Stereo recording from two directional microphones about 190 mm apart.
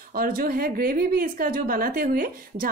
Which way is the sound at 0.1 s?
50° right (ahead or behind).